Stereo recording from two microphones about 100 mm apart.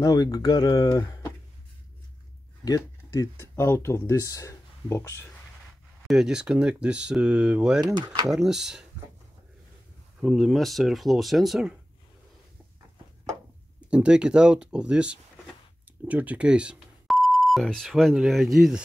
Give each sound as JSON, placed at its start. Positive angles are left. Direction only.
{"t": 0.0, "sound": "speech", "side_deg": 40}
{"t": 2.6, "sound": "speech", "side_deg": 40}
{"t": 3.5, "sound": "speech", "side_deg": 25}
{"t": 6.0, "sound": "speech", "side_deg": -5}
{"t": 10.3, "sound": "speech", "side_deg": 0}
{"t": 13.8, "sound": "speech", "side_deg": -10}